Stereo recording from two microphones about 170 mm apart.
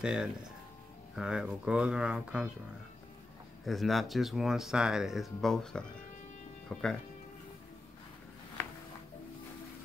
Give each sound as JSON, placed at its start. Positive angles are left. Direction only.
{"t": 0.0, "sound": "speech", "side_deg": -5}
{"t": 3.6, "sound": "speech", "side_deg": 0}